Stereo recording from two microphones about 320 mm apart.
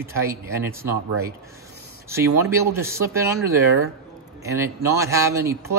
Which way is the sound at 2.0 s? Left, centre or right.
Centre.